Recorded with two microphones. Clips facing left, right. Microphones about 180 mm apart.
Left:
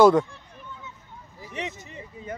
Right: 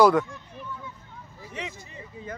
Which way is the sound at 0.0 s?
25° left (ahead or behind).